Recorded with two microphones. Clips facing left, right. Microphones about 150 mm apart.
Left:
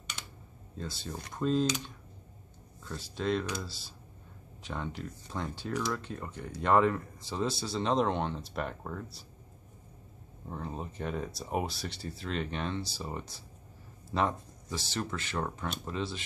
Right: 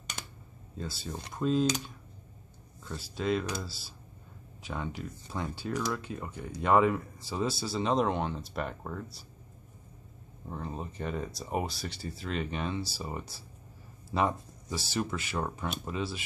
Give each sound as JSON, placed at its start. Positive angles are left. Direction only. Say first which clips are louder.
{"t": 0.2, "sound": "a sound", "louder": "right 3 dB", "side_deg": -45}
{"t": 0.7, "sound": "speech", "louder": "right 1 dB", "side_deg": -5}
{"t": 2.8, "sound": "speech", "louder": "right 1 dB", "side_deg": -5}
{"t": 10.5, "sound": "speech", "louder": "right 1 dB", "side_deg": 0}